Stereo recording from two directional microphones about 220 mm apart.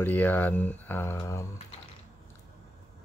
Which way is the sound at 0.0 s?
10° left (ahead or behind).